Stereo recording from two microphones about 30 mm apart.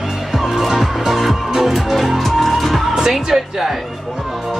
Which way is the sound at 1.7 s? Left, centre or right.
Centre.